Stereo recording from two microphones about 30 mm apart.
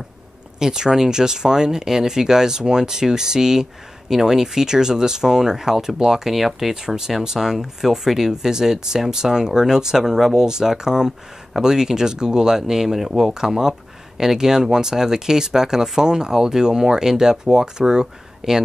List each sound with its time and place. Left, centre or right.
0.6 s speech: right
6.3 s speech: centre